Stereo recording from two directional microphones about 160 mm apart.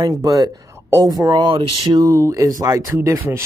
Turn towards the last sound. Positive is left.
turn(degrees=-15)  # may be behind; listen again after turning